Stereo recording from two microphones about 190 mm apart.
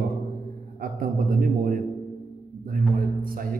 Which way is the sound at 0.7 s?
50° right (ahead or behind).